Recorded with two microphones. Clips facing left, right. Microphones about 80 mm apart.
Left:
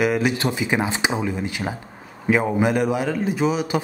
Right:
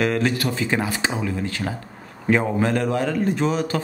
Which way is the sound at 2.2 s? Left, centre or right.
Centre.